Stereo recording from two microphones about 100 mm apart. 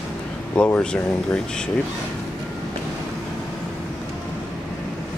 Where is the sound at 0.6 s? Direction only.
15° left (ahead or behind).